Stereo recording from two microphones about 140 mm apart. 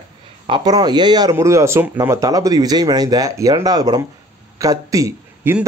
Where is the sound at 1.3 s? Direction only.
20° right (ahead or behind).